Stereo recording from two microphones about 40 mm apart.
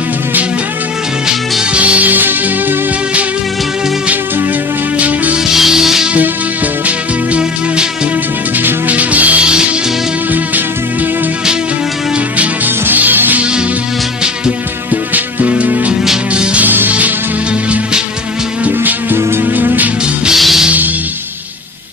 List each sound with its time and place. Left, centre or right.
1.7 s music: right
4.9 s music: right
5.5 s music: centre
8.5 s music: right
9.4 s music: right
12.6 s music: right
13.4 s music: right
14.9 s music: right
16.6 s music: right
18.8 s music: right
19.1 s music: right
19.5 s music: right
20.3 s music: centre